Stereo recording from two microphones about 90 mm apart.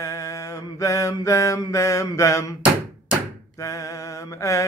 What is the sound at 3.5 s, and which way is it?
Mantra, 35° left (ahead or behind).